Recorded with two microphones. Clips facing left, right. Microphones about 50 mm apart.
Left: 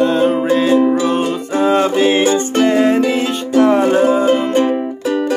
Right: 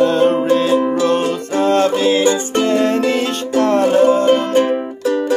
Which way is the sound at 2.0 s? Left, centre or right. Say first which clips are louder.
Left 1 dB; left.